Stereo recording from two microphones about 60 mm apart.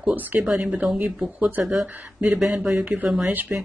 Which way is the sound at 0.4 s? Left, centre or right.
Centre.